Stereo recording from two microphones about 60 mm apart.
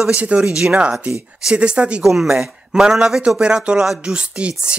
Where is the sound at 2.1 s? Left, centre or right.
Centre.